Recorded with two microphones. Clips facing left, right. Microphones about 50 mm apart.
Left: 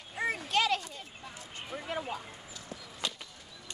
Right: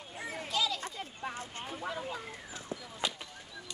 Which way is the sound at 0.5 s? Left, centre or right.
Left.